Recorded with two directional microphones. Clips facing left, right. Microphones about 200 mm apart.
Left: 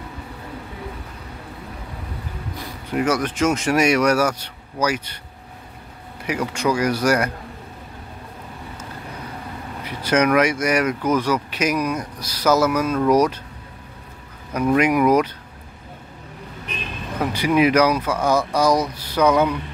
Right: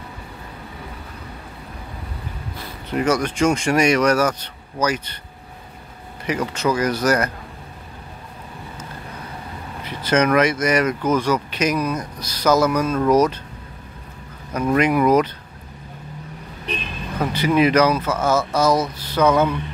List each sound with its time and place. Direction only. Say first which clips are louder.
2.5 s speech: even; 10° left (ahead or behind)
6.2 s speech: even; 10° left (ahead or behind)
9.8 s speech: even; 10° left (ahead or behind)
14.7 s speech: even; 10° left (ahead or behind)
16.7 s vehicle: right 5 dB; 35° right (ahead or behind)
17.2 s speech: even; 10° left (ahead or behind)